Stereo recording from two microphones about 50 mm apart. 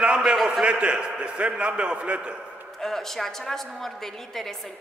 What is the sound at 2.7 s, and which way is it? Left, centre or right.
A woman's voice, centre.